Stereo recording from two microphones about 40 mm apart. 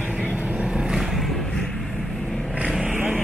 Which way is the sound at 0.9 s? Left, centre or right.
Centre.